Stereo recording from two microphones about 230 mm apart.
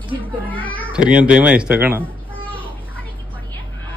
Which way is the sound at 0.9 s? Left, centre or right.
Centre.